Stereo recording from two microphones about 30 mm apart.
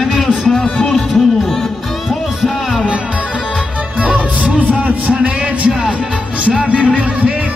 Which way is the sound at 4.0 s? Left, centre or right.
Right.